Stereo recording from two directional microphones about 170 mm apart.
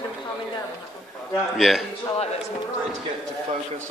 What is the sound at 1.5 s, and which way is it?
Speech, centre (ahead or behind).